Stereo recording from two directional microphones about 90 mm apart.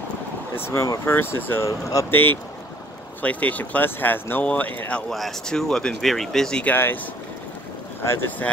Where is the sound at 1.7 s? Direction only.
40° left (ahead or behind).